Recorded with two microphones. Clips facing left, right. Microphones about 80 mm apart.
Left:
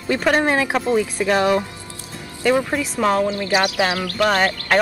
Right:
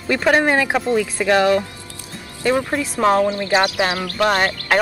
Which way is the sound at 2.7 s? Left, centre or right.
Centre.